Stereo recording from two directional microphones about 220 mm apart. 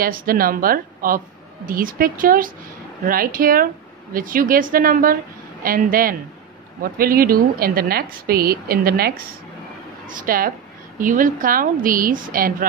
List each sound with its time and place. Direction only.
0.0 s a woman's voice: 40° right (ahead or behind)